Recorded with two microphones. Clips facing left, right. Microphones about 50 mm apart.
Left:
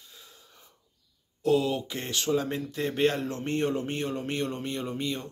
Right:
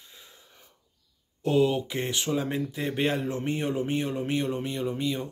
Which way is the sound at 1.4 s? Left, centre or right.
Right.